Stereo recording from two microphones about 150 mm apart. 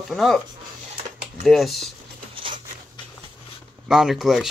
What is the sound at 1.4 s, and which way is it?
Speech, centre (ahead or behind).